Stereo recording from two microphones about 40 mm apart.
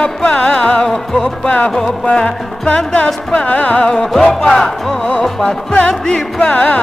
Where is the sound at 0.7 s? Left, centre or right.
Centre.